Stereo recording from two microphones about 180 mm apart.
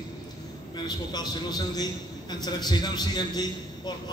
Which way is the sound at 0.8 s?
20° left (ahead or behind).